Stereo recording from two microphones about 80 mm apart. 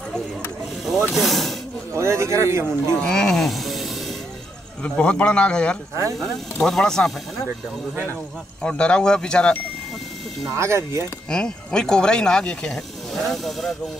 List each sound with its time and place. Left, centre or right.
1.1 s speech: centre
2.0 s speech: right
3.0 s speech: centre
4.8 s speech: centre
7.9 s speech: right
8.6 s speech: centre
10.5 s speech: right
11.2 s speech: centre